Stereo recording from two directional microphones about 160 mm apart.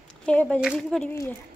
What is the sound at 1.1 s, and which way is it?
Speech, 15° left (ahead or behind).